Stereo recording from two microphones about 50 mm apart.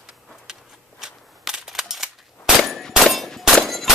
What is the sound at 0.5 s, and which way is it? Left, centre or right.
Camera, centre.